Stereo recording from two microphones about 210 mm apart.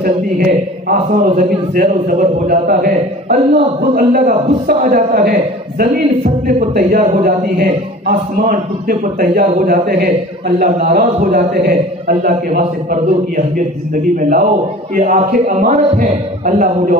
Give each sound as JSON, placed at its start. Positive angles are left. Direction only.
{"t": 0.0, "sound": "a man's voice", "side_deg": -40}
{"t": 15.0, "sound": "a man's voice", "side_deg": -35}